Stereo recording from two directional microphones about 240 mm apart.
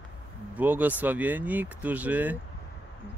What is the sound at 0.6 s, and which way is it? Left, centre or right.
Speech, centre.